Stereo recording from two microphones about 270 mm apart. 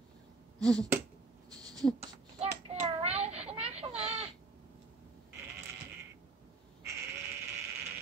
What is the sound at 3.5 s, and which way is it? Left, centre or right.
Baby cry, right.